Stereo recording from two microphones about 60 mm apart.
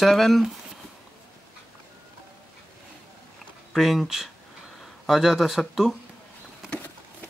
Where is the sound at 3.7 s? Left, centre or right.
Centre.